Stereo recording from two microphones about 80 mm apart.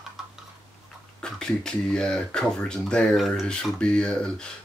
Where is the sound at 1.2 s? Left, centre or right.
Centre.